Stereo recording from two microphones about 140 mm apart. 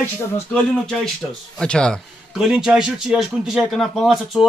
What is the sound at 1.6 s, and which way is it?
Speech, 5° left (ahead or behind).